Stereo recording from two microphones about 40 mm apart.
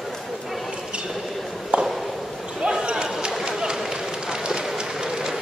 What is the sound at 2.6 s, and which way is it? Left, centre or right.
Basketball bounce, right.